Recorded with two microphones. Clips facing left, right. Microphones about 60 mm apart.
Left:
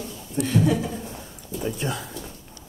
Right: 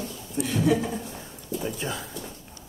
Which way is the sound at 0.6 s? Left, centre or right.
Centre.